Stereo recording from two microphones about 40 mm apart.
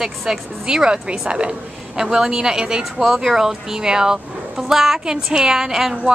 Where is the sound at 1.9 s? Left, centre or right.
Centre.